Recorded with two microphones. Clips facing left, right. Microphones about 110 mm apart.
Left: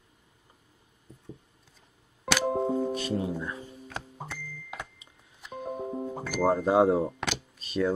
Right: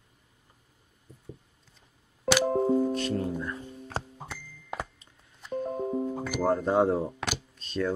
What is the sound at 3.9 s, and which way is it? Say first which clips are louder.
Music: right 5 dB; 30° right (ahead or behind).